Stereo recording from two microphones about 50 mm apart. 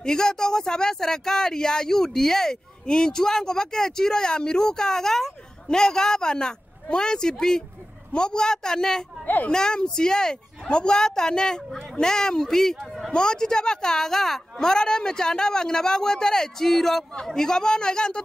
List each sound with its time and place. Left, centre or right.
0.0 s speech: centre
9.2 s a woman's voice: left
9.5 s speech: centre